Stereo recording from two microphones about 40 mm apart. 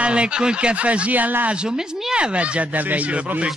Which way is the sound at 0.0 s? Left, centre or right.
Right.